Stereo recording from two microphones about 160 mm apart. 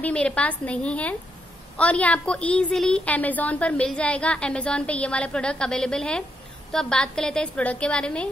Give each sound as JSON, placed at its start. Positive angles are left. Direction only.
{"t": 0.0, "sound": "a woman's voice", "side_deg": 5}